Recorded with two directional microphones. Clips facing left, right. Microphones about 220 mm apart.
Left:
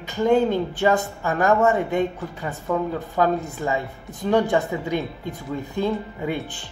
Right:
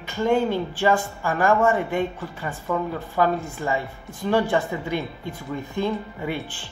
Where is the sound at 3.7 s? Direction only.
15° left (ahead or behind).